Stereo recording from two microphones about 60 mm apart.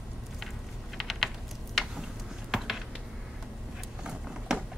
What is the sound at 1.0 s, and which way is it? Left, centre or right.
Typing, centre.